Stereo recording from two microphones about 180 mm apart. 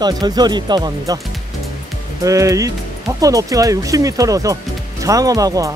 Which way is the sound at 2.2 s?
20° right (ahead or behind).